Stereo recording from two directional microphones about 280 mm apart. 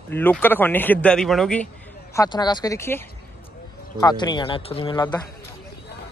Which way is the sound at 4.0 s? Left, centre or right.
Centre.